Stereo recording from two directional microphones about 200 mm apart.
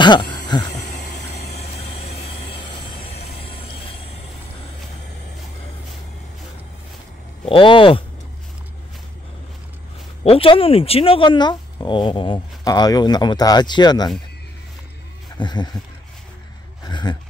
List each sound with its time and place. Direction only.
0.0 s speech: 20° left (ahead or behind)
0.8 s a sound: 55° left (ahead or behind)
2.2 s vehicle: 25° left (ahead or behind)
3.0 s a sound: 50° left (ahead or behind)
3.3 s train: 25° left (ahead or behind)
7.4 s speech: 25° left (ahead or behind)
10.2 s speech: 30° left (ahead or behind)
15.3 s a sound: 20° left (ahead or behind)
16.8 s gasp: 20° left (ahead or behind)